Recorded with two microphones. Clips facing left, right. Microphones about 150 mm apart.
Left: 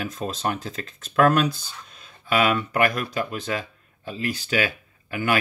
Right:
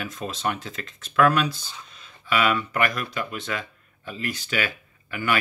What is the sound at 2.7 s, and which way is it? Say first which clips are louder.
Speech: left 3 dB; 40° left (ahead or behind).